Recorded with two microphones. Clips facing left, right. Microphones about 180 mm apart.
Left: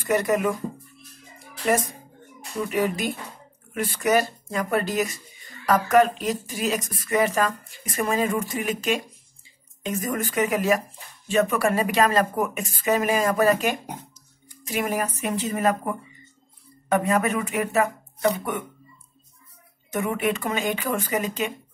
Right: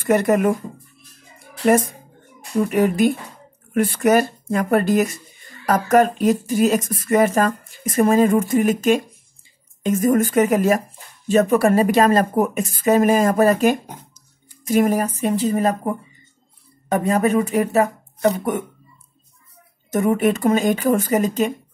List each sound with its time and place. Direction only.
0.0 s speech: 55° right (ahead or behind)
2.6 s speech: 50° right (ahead or behind)
19.9 s speech: 40° right (ahead or behind)